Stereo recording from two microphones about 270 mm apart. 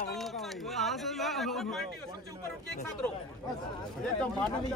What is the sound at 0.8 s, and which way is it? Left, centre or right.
Speech, centre.